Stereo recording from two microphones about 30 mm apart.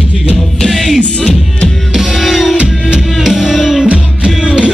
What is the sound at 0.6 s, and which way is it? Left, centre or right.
Music, centre.